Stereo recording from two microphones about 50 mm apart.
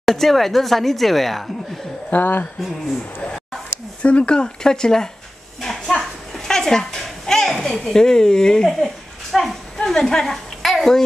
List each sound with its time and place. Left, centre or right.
0.0 s speech: centre
2.0 s speech: left
4.0 s speech: left
5.6 s a sound: centre
6.3 s a child's voice: centre